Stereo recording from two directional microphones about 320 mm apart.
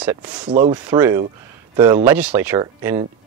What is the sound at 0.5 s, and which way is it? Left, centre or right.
Speech, centre.